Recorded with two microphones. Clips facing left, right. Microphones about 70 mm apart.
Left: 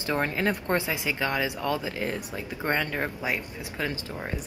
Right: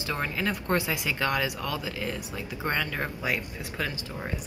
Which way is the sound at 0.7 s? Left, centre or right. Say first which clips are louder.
Left 1 dB; left.